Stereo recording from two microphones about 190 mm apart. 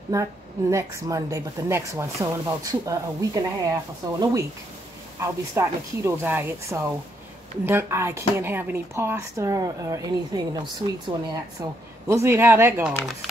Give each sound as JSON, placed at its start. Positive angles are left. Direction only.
{"t": 0.1, "sound": "speech", "side_deg": -15}